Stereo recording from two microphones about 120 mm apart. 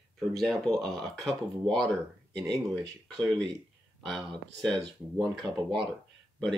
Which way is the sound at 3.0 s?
5° left (ahead or behind).